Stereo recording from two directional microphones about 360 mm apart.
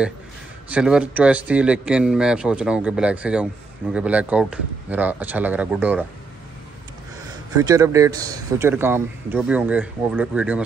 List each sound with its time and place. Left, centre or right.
0.7 s a man's voice: centre
7.5 s a man's voice: centre